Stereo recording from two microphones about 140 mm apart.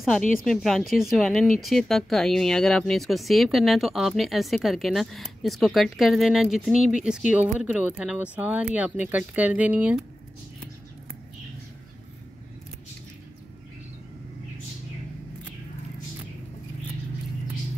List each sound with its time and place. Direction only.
0.2 s a woman's voice: 75° left (ahead or behind)
0.5 s speech: centre (ahead or behind)